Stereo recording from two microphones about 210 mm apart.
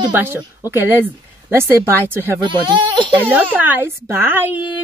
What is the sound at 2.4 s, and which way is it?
Speech, 20° right (ahead or behind).